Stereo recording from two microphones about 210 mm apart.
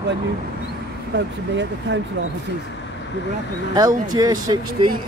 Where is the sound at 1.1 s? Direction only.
60° right (ahead or behind).